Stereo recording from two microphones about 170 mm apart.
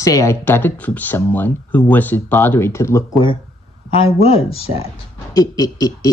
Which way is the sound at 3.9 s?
35° left (ahead or behind).